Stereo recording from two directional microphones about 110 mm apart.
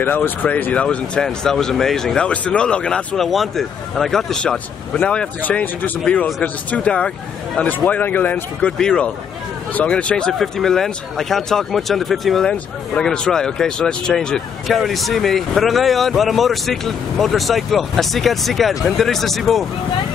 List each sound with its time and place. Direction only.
0.0 s speech: 20° left (ahead or behind); by 19.6 s centre (ahead or behind)